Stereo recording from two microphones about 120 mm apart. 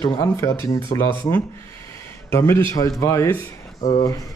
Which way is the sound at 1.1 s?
15° left (ahead or behind).